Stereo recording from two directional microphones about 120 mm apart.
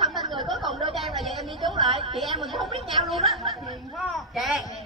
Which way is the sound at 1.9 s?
50° right (ahead or behind).